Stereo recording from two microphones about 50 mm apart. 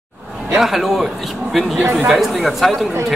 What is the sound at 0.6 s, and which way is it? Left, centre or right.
Speech, centre.